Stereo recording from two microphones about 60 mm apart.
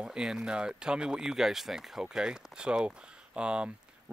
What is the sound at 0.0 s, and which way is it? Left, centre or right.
Speech, centre.